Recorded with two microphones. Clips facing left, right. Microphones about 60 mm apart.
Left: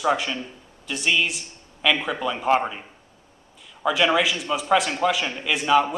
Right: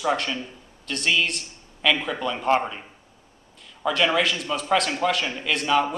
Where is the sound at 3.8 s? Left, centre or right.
Centre.